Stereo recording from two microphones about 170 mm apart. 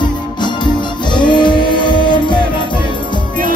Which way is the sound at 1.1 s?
25° left (ahead or behind).